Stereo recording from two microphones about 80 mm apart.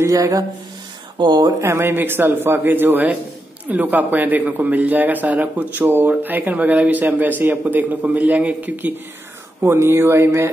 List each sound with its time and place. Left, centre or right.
0.0 s speech: right
1.1 s speech: right
1.6 s a man's voice: right
9.6 s speech: right